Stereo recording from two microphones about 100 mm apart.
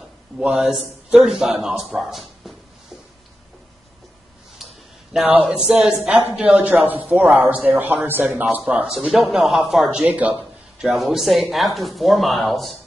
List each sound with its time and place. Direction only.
0.4 s speech: 5° right (ahead or behind)
4.6 s a sound: centre (ahead or behind)
5.2 s a man's voice: 10° right (ahead or behind)
8.9 s speech: 5° right (ahead or behind)
10.0 s speech: 15° right (ahead or behind); by 12.7 s centre (ahead or behind)